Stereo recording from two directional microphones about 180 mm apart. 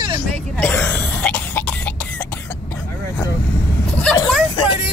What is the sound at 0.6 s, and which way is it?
Cough, 10° left (ahead or behind).